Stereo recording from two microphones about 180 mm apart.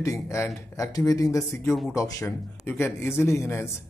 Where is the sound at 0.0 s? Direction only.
15° left (ahead or behind).